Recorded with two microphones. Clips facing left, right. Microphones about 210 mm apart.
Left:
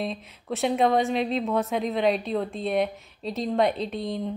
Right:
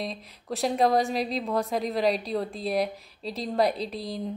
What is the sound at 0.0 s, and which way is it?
Speech, centre (ahead or behind).